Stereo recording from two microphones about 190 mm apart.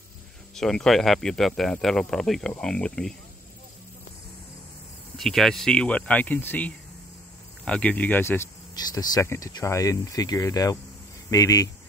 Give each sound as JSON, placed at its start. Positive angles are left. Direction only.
{"t": 0.6, "sound": "speech", "side_deg": 0}
{"t": 5.1, "sound": "speech", "side_deg": 0}